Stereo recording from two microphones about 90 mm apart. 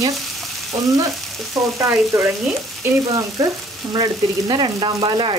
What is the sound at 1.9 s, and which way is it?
Speech, 25° right (ahead or behind).